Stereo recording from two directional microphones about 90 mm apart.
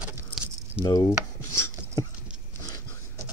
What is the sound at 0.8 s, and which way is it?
Chopping, 45° left (ahead or behind).